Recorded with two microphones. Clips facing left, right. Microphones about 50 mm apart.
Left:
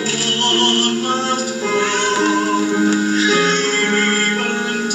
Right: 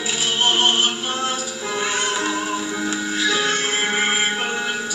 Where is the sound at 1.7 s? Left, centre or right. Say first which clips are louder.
Left 6 dB; left.